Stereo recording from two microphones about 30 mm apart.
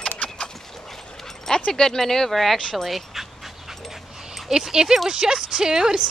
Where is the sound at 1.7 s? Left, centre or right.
Centre.